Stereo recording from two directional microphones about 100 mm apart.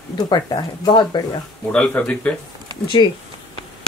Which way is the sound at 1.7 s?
10° left (ahead or behind).